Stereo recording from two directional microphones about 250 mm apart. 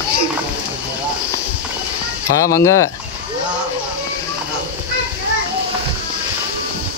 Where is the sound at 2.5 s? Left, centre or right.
Centre.